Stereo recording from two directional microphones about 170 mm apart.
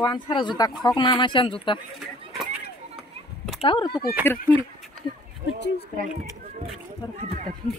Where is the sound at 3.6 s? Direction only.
30° left (ahead or behind).